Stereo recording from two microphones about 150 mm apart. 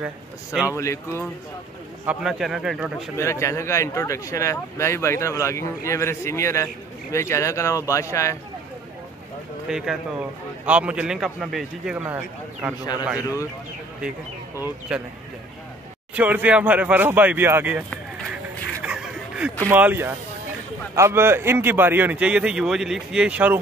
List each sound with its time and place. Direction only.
0.0 s a man's voice: 5° right (ahead or behind)
0.7 s speech: 20° left (ahead or behind)
2.0 s a man's voice: 5° right (ahead or behind)
3.2 s speech: 20° left (ahead or behind)
9.7 s a man's voice: 5° right (ahead or behind)
13.2 s speech: 20° left (ahead or behind)
16.2 s a man's voice: 10° right (ahead or behind)
18.9 s a sound: 5° right (ahead or behind)
19.6 s a man's voice: 15° right (ahead or behind)